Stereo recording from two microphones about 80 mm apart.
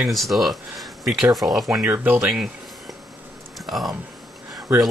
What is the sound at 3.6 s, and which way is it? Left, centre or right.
Speech, centre.